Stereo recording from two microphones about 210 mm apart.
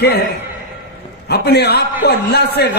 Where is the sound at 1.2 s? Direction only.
50° left (ahead or behind).